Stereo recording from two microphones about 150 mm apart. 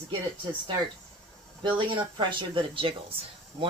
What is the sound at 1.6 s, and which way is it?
Speech, 30° right (ahead or behind).